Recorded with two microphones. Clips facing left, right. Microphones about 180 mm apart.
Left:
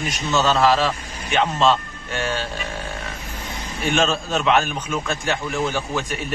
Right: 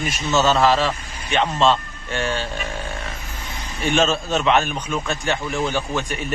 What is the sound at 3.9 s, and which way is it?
A man's voice, centre (ahead or behind).